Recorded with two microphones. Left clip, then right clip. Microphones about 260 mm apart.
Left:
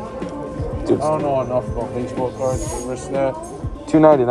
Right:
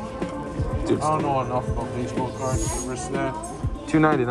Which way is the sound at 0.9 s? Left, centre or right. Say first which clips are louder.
Left 6 dB; centre.